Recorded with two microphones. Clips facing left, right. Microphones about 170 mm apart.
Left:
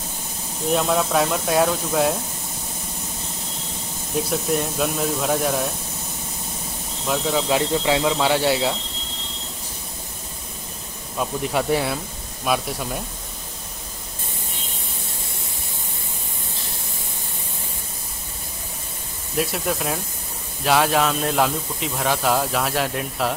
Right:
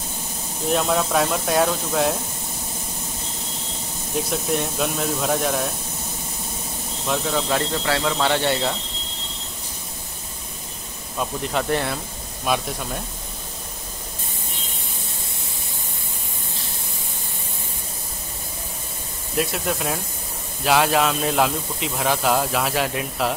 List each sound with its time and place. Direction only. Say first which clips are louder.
0.7 s speech: left 1 dB; centre (ahead or behind)
4.1 s speech: left 1 dB; centre (ahead or behind)
7.1 s speech: left 2 dB; 5° left (ahead or behind)
11.1 s speech: left 2 dB; 5° left (ahead or behind)
19.3 s speech: even; centre (ahead or behind)